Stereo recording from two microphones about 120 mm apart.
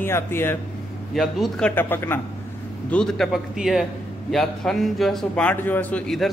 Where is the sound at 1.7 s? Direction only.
20° left (ahead or behind).